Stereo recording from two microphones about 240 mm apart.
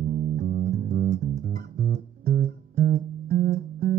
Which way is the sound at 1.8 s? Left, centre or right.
Right.